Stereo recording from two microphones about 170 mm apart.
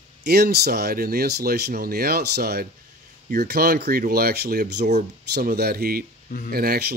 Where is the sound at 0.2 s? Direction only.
70° right (ahead or behind).